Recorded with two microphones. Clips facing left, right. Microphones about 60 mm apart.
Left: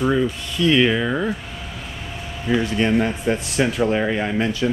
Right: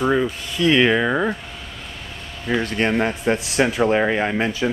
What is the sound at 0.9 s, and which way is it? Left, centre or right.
Speech, centre.